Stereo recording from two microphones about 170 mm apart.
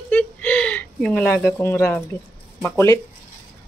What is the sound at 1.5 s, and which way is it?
Speech, 15° left (ahead or behind).